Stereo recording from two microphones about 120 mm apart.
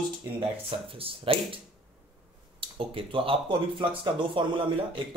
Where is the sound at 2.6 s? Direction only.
45° right (ahead or behind).